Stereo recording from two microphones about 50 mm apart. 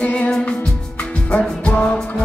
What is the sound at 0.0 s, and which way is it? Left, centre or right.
Music, left.